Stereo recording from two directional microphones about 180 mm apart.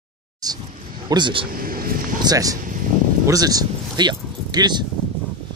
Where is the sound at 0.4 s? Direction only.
20° right (ahead or behind).